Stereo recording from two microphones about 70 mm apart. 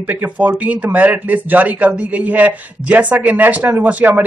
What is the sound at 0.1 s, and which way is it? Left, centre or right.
A man's voice, right.